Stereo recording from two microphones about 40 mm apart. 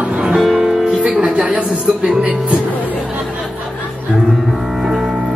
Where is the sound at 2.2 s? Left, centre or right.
Right.